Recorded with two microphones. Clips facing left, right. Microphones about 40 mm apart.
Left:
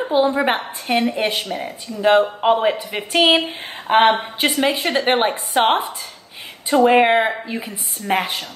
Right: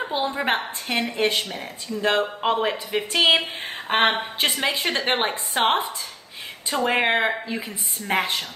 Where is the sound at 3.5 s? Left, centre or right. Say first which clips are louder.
Left 5 dB; centre.